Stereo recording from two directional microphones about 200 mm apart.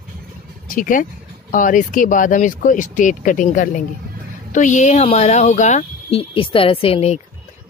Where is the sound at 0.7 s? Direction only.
40° left (ahead or behind).